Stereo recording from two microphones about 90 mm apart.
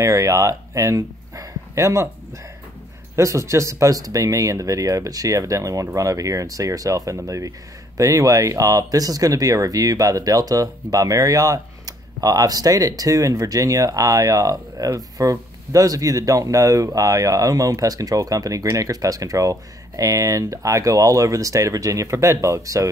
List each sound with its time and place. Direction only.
0.0 s speech: 35° right (ahead or behind)